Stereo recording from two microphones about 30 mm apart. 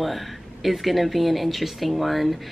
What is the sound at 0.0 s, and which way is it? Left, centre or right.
A woman's voice, centre.